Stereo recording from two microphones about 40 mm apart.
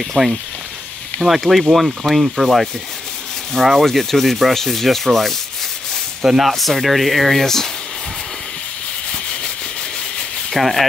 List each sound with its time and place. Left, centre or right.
0.2 s speech: left
1.2 s sanding: centre
6.2 s speech: centre
6.5 s sanding: centre
10.5 s speech: centre